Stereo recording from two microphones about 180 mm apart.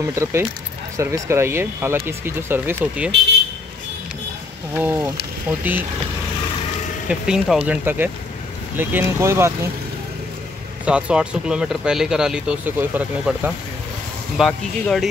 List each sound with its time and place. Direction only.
0.0 s speech: 15° right (ahead or behind)
4.7 s speech: 10° right (ahead or behind)
7.1 s speech: 5° right (ahead or behind)
10.9 s speech: 5° right (ahead or behind)